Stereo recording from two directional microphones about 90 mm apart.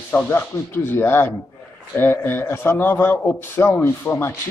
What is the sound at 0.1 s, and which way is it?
A man's voice, 25° left (ahead or behind).